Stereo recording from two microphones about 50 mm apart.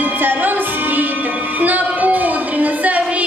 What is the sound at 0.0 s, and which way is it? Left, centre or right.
Music, right.